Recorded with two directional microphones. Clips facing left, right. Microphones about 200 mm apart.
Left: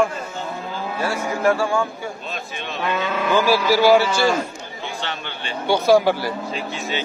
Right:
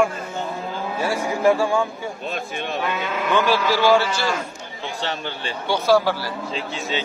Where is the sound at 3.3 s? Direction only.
5° left (ahead or behind).